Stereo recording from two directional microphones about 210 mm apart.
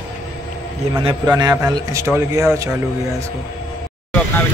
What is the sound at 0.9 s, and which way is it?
Speech, 20° right (ahead or behind).